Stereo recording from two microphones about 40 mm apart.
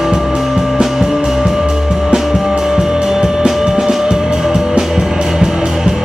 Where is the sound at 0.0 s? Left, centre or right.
Centre.